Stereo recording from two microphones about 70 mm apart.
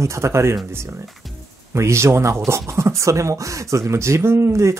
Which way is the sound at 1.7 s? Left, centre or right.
Right.